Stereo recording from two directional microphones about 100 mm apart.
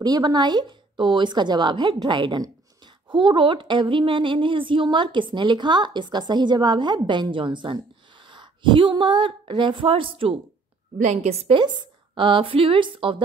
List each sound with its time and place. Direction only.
0.0 s a woman's voice: 45° right (ahead or behind); by 10.3 s 65° right (ahead or behind)
11.1 s a woman's voice: 80° right
12.2 s a woman's voice: 60° right (ahead or behind)